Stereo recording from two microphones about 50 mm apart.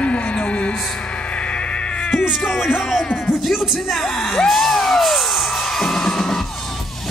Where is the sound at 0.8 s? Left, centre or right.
Left.